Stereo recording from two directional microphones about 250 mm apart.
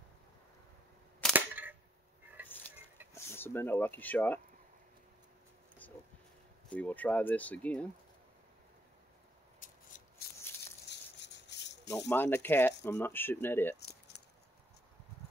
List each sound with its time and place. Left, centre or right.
1.3 s single-lens reflex camera: centre
3.2 s speech: centre
6.7 s speech: centre
9.6 s scissors: left
10.9 s rattle: left
12.1 s speech: centre